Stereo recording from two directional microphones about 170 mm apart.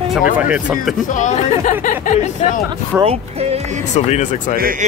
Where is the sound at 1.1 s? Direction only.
45° left (ahead or behind).